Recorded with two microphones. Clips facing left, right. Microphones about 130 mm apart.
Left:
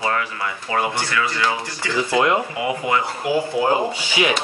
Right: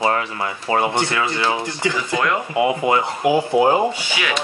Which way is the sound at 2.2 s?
20° left (ahead or behind).